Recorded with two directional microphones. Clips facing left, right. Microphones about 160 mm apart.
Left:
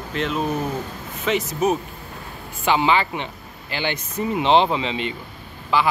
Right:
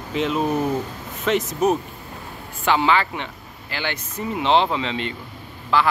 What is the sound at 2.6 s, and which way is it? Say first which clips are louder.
Speech: even; 15° left (ahead or behind).